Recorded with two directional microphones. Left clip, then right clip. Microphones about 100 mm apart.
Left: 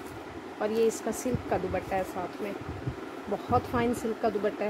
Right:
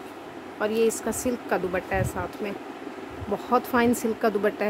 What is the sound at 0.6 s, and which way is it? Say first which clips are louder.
Speech: right 3 dB; 30° right (ahead or behind).